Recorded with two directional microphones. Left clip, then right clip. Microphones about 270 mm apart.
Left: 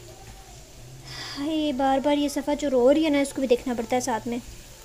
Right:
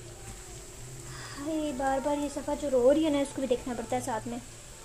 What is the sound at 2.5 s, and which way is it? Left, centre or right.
Speech, centre.